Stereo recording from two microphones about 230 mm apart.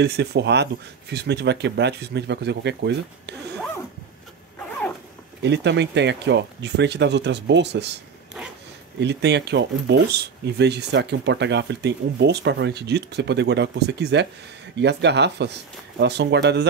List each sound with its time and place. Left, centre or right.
0.0 s speech: right
5.4 s speech: right
9.0 s speech: right